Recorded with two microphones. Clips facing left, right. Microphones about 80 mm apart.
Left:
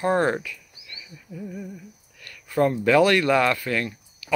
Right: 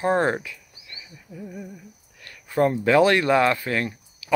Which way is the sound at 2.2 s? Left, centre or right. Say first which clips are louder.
Right 1 dB; right.